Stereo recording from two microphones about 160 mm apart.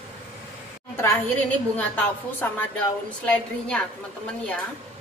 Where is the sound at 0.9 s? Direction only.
15° left (ahead or behind).